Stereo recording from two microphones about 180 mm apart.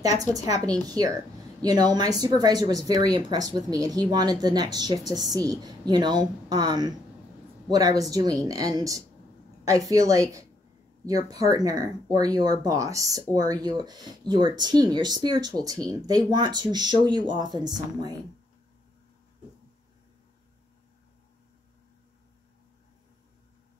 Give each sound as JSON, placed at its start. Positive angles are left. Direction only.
{"t": 0.0, "sound": "speech", "side_deg": -20}